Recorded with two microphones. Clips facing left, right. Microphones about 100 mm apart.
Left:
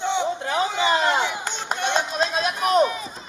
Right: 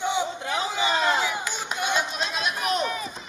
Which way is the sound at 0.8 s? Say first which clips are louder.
Left 2 dB; 35° left (ahead or behind).